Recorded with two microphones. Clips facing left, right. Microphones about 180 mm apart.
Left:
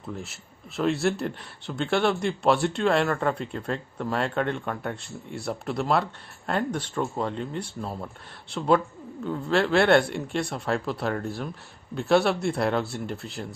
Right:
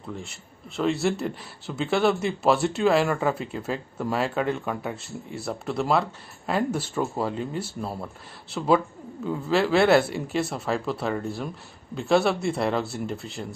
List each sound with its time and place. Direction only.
0.1 s speech: centre (ahead or behind)